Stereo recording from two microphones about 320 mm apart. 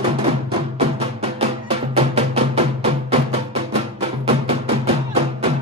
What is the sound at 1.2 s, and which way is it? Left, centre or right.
Music, centre.